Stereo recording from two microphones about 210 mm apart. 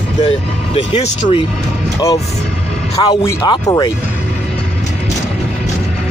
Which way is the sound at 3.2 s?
20° left (ahead or behind).